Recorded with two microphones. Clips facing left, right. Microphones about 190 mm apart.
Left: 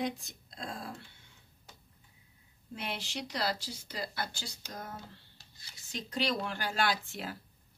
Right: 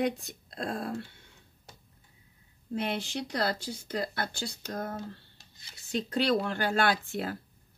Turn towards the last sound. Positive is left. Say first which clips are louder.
# right 5 dB
turn(degrees=-55)  # may be behind; listen again after turning